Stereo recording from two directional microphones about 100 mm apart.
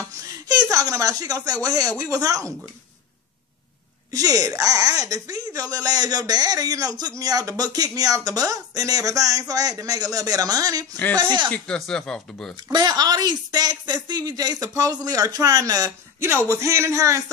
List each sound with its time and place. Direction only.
0.5 s speech: 35° right (ahead or behind)
4.1 s speech: 35° right (ahead or behind)
11.5 s speech: 10° left (ahead or behind)
12.7 s speech: 45° right (ahead or behind)
16.4 s a man's voice: 30° right (ahead or behind)